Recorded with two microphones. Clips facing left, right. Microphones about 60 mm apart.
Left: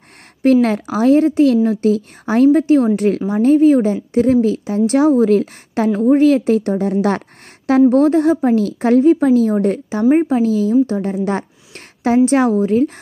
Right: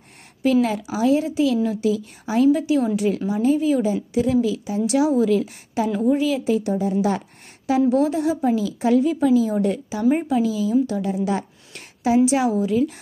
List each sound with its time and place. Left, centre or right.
0.4 s a woman's voice: left